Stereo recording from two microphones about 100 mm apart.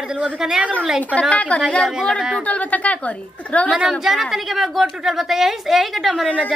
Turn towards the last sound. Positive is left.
turn(degrees=10)  # may be behind; listen again after turning